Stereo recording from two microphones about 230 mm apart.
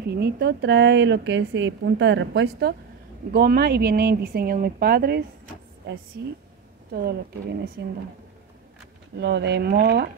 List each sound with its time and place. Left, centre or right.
0.0 s a woman's voice: right
6.9 s a woman's voice: right
9.2 s a woman's voice: right